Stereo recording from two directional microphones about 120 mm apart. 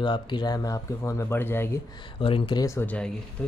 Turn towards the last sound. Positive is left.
turn(degrees=10)  # may be behind; listen again after turning